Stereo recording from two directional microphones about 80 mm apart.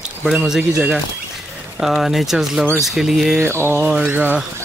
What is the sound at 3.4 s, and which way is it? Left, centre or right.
Mantra, right.